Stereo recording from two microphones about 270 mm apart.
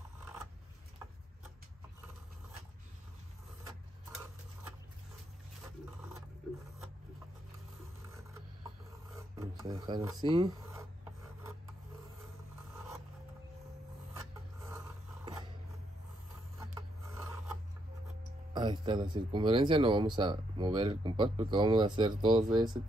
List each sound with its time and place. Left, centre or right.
9.6 s speech: centre
18.5 s speech: centre